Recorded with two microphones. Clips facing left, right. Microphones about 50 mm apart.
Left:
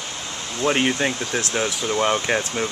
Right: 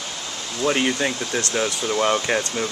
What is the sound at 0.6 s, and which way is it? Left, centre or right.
Speech, centre.